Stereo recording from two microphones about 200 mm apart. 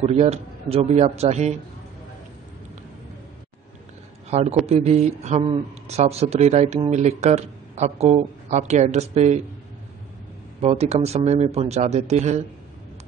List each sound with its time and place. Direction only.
0.0 s speech: 30° right (ahead or behind)
4.3 s a man's voice: 30° right (ahead or behind)
10.6 s speech: 30° right (ahead or behind)